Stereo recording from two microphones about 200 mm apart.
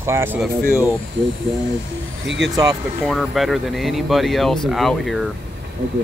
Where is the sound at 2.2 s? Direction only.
65° right (ahead or behind).